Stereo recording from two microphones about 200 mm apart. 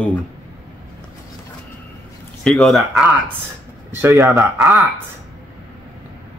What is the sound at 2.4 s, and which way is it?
Speech, 5° left (ahead or behind).